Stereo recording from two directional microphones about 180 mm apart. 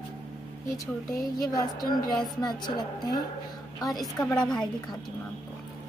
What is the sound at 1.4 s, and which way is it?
Speech, 20° left (ahead or behind).